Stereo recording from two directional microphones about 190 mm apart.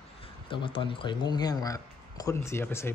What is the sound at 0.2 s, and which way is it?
Speech, 25° left (ahead or behind).